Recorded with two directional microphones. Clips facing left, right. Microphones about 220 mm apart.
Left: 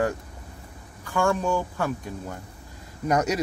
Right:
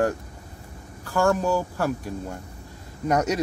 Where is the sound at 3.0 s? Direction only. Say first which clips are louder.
Right 1 dB; 20° right (ahead or behind).